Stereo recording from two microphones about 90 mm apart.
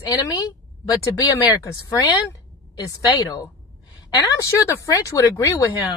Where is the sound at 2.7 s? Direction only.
40° left (ahead or behind).